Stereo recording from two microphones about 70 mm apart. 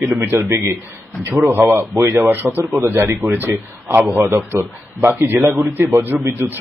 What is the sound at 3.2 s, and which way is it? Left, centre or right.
Speech, right.